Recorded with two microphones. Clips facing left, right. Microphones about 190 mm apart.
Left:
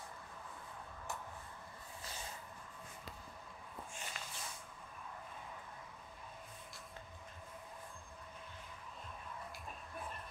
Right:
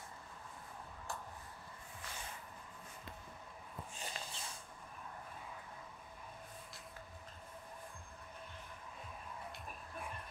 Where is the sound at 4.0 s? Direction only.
30° right (ahead or behind).